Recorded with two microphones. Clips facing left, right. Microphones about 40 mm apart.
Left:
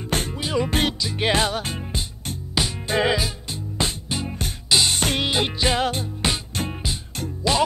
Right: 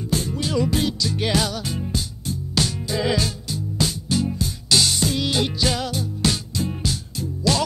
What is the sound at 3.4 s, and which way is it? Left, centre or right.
Music, left.